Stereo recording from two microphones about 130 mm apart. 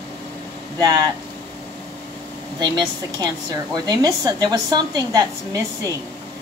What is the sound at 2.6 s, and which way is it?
A woman's voice, 35° right (ahead or behind).